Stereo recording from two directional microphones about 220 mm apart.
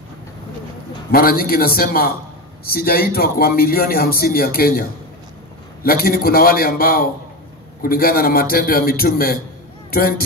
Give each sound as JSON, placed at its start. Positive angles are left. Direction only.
{"t": 1.1, "sound": "a man's voice", "side_deg": 40}